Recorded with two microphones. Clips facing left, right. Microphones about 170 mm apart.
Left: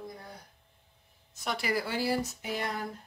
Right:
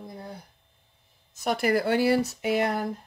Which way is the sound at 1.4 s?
50° right (ahead or behind).